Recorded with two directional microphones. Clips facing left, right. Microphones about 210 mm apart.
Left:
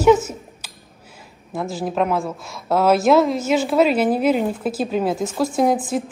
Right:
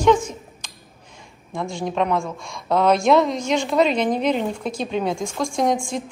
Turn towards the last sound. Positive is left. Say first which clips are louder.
# left 3 dB
turn(degrees=5)  # may be behind; listen again after turning